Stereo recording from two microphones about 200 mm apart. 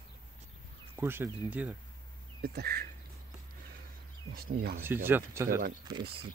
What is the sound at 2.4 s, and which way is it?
Speech, 50° right (ahead or behind).